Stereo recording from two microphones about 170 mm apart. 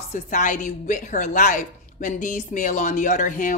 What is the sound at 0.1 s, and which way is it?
Speech, 50° left (ahead or behind).